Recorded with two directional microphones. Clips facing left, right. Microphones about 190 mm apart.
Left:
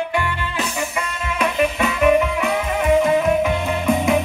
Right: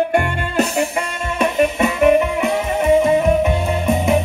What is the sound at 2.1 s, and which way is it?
Music, 15° right (ahead or behind).